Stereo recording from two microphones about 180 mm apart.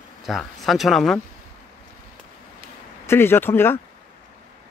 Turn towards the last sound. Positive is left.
turn(degrees=10)  # may be behind; listen again after turning